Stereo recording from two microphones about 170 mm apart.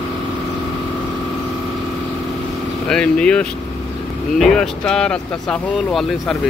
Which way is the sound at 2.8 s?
5° left (ahead or behind).